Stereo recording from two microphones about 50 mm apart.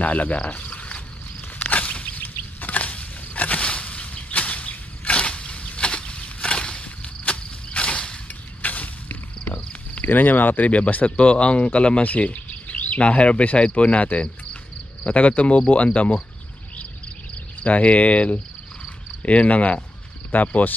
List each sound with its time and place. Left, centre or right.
0.0 s speech: left
0.5 s cricket: left
1.6 s a sound: left
8.6 s a sound: left
10.0 s speech: left
17.6 s speech: left